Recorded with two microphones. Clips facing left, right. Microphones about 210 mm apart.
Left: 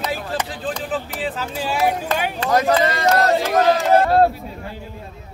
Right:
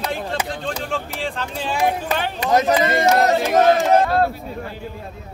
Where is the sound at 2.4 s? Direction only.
15° right (ahead or behind).